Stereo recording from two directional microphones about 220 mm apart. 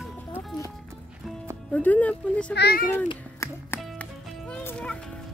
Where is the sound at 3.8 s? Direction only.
Centre (ahead or behind).